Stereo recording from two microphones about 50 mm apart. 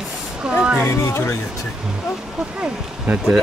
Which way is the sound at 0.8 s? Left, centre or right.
Left.